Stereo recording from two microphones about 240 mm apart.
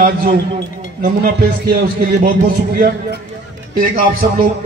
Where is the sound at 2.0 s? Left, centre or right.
Right.